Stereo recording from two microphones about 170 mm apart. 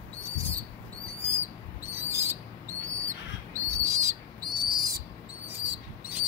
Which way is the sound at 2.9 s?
15° right (ahead or behind).